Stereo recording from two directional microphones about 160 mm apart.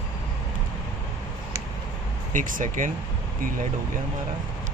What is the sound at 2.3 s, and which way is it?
Speech, 55° right (ahead or behind).